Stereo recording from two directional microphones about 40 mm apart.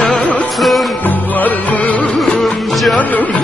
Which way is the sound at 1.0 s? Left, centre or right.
Left.